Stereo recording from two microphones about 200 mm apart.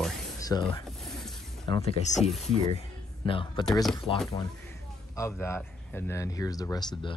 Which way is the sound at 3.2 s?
25° left (ahead or behind).